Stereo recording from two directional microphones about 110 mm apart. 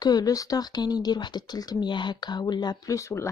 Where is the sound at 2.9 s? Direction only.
25° left (ahead or behind).